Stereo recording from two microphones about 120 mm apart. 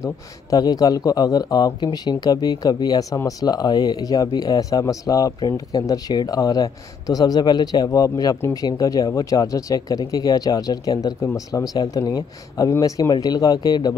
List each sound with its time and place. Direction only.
0.0 s speech: 30° left (ahead or behind)
8.4 s speech: 20° left (ahead or behind)